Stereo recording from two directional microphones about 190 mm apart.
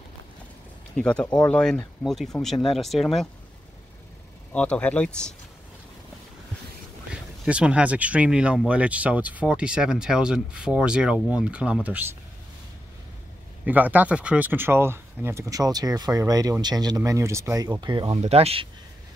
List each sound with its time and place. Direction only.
0.9 s speech: 5° left (ahead or behind)
4.5 s speech: 5° left (ahead or behind)
7.4 s speech: 5° right (ahead or behind)
13.7 s speech: 10° right (ahead or behind); by 18.7 s 30° right (ahead or behind)